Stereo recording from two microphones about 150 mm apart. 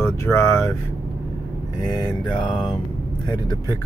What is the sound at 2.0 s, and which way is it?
Mantra, 30° left (ahead or behind).